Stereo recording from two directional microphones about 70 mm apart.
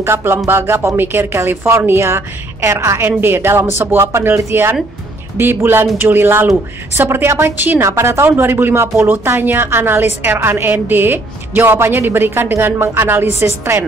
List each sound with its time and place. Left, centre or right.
0.0 s a woman's voice: right
3.0 s a woman's voice: right
7.8 s a woman's voice: right